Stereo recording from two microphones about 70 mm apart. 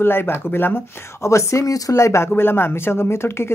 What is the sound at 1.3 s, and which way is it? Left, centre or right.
Speech, left.